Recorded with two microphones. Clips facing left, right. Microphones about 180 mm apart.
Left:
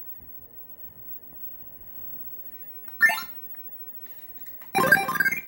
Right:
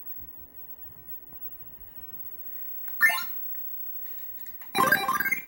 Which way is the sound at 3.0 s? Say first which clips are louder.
Left 3 dB; 65° left (ahead or behind).